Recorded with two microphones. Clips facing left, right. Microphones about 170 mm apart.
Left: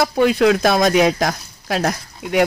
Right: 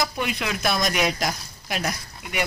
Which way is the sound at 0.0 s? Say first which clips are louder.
Left 12 dB; 75° left (ahead or behind).